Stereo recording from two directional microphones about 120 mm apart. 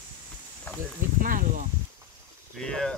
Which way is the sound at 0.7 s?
15° left (ahead or behind).